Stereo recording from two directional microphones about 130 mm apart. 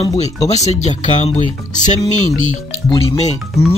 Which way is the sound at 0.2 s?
55° left (ahead or behind).